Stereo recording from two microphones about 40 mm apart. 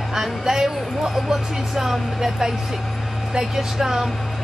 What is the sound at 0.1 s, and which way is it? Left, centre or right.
Speech, centre.